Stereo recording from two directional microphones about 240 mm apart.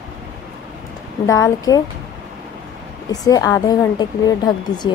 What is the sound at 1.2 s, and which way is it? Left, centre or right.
Speech, centre.